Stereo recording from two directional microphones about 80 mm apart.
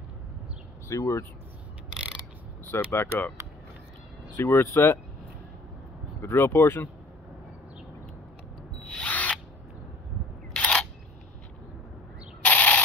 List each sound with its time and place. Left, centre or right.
0.8 s speech: left
2.6 s speech: left
4.4 s speech: left
6.2 s speech: left
8.7 s drill: centre
10.5 s single-lens reflex camera: centre
12.4 s a sound: centre